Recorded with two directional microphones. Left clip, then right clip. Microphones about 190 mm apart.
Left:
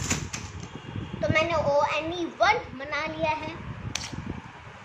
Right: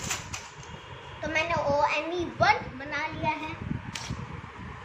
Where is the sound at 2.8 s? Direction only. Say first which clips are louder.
Left 2 dB; 40° left (ahead or behind).